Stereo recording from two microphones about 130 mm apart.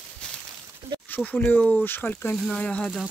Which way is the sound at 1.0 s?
15° left (ahead or behind).